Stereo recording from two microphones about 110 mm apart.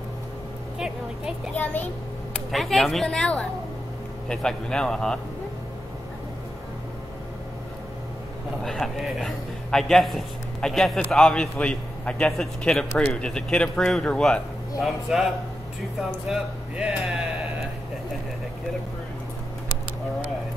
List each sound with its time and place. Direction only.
0.7 s vehicle: 5° right (ahead or behind)
1.6 s a man's voice: 15° left (ahead or behind)
2.5 s speech: centre (ahead or behind)
8.6 s a man's voice: centre (ahead or behind)